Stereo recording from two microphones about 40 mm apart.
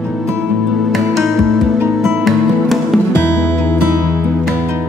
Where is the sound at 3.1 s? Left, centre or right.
Left.